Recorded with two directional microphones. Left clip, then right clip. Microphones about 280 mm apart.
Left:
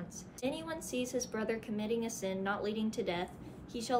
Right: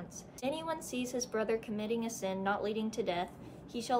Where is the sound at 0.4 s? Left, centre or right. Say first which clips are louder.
Right 2 dB; centre.